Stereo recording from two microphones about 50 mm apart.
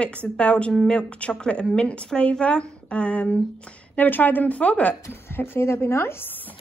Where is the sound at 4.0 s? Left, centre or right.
Left.